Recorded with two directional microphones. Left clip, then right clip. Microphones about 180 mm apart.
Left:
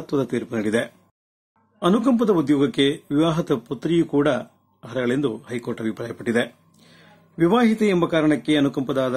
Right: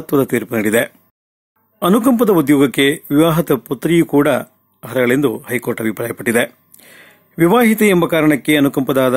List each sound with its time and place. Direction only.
0.0 s a man's voice: 30° right (ahead or behind)